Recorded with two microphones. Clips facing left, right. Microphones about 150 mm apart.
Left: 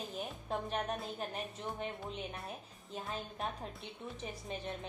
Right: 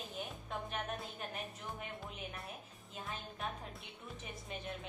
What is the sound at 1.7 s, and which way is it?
A woman's voice, 30° left (ahead or behind).